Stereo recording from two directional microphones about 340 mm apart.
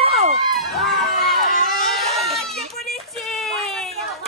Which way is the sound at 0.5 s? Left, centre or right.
Centre.